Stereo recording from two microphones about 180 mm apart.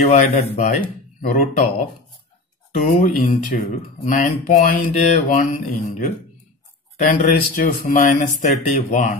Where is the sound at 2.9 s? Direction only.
45° left (ahead or behind).